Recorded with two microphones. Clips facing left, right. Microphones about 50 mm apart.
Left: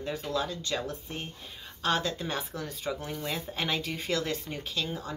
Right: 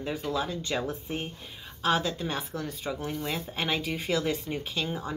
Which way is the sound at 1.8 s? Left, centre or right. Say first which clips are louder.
Right 2 dB; centre.